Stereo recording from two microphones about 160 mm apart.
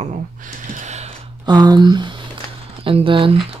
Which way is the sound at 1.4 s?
25° right (ahead or behind).